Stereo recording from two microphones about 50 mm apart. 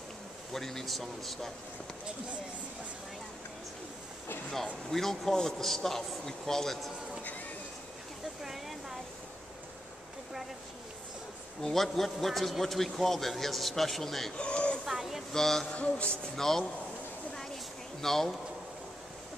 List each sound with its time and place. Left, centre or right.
0.5 s a man's voice: centre
4.9 s speech: centre
8.4 s a sound: centre
11.6 s a man's voice: centre
14.3 s a sound: left
14.9 s a sound: centre
15.3 s speech: centre
15.7 s a man's voice: left
16.3 s speech: centre
18.0 s a man's voice: centre